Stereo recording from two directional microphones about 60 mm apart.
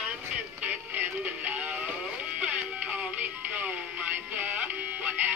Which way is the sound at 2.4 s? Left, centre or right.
Right.